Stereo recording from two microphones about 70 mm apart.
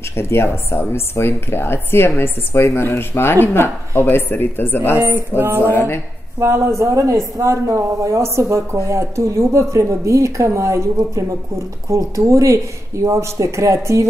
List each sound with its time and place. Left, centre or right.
0.1 s speech: left
5.0 s a sound: right
5.7 s speech: left
6.4 s speech: right